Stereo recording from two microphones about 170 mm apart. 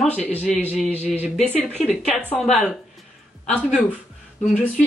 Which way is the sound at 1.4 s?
5° left (ahead or behind).